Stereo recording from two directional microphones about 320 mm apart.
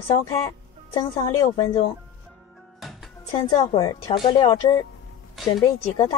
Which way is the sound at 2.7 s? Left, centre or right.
Centre.